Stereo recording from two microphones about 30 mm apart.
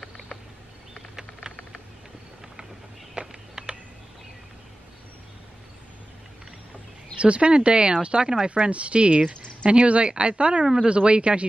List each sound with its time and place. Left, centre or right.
3.3 s a sound: right
7.2 s speech: right
8.5 s speech: right